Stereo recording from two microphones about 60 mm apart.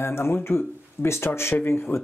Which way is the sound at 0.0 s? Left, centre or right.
Left.